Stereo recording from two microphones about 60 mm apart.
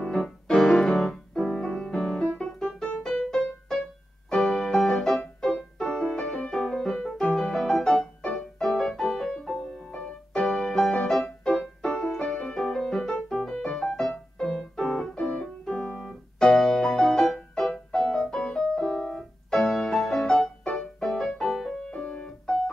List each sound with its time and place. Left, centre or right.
0.0 s piano: centre
0.6 s piano: centre
1.6 s music: centre
2.3 s piano: centre
3.3 s music: centre
8.2 s music: centre
14.8 s keyboard: centre
17.6 s music: centre
21.9 s piano: centre